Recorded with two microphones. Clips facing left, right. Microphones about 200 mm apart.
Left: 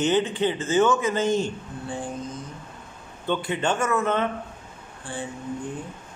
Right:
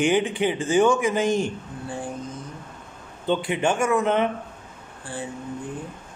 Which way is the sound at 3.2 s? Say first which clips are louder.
Right 2 dB; 15° right (ahead or behind).